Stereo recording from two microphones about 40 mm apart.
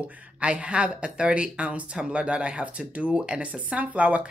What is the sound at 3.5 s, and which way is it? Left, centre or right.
Speech, right.